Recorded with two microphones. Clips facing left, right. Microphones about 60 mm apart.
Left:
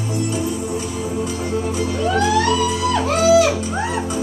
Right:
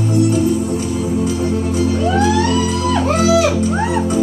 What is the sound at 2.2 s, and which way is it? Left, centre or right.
Music, right.